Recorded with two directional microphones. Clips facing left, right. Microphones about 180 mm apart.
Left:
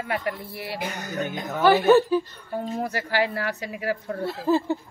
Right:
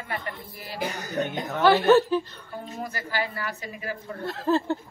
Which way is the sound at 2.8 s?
70° left (ahead or behind).